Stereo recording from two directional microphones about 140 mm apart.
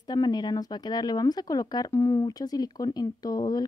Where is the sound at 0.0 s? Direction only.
30° left (ahead or behind).